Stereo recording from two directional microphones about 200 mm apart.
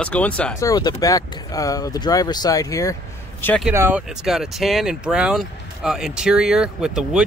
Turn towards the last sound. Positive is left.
turn(degrees=-5)  # may be behind; listen again after turning